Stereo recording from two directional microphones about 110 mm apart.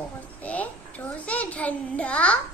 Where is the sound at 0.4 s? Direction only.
15° left (ahead or behind).